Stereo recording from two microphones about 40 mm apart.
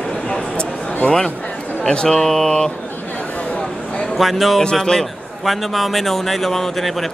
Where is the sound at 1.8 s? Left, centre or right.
Left.